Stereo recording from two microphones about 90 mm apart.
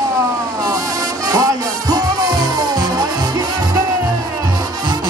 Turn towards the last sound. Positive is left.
turn(degrees=-45)  # may be behind; listen again after turning